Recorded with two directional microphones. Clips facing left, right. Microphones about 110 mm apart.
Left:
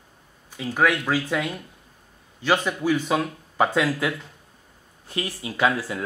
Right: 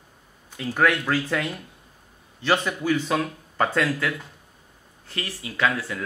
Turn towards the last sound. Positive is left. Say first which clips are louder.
# left 2 dB
turn(degrees=20)  # may be behind; listen again after turning